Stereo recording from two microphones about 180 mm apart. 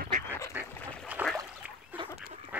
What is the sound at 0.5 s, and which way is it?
Duck, 10° right (ahead or behind).